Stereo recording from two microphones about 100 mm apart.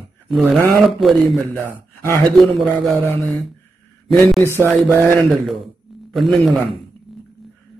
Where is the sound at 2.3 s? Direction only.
Centre (ahead or behind).